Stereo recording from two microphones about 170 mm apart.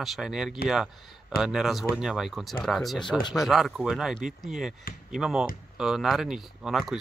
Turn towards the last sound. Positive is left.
turn(degrees=0)  # may be behind; listen again after turning